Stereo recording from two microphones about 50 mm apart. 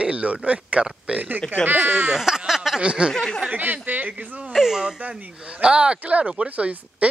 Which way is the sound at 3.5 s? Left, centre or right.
Right.